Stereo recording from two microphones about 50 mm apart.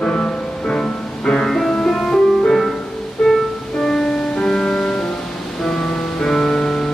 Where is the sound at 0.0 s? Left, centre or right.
Centre.